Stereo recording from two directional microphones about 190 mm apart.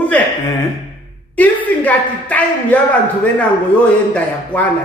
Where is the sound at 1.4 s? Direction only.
10° left (ahead or behind).